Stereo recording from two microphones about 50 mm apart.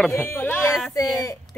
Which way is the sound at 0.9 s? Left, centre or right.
Left.